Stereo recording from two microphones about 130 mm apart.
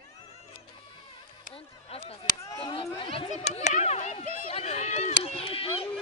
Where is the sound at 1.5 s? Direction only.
50° left (ahead or behind).